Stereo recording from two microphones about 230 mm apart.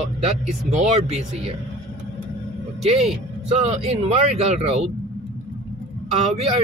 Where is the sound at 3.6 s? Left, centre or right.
Right.